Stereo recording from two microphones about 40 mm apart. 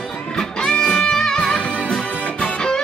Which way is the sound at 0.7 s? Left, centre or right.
Left.